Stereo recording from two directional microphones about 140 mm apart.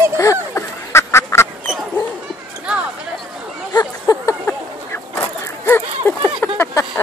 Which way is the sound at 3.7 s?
25° left (ahead or behind).